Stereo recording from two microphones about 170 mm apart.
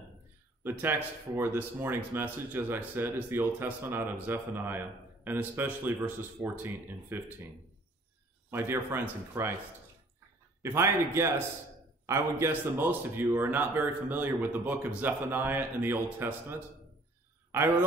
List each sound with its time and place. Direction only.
0.7 s speech: 10° right (ahead or behind)
8.5 s speech: 15° right (ahead or behind)
10.6 s a man's voice: 15° right (ahead or behind)